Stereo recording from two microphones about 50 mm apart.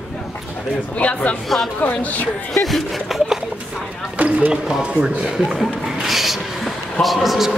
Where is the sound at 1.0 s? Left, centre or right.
Left.